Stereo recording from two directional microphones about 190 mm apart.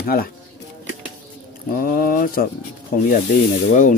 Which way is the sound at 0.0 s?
50° left (ahead or behind).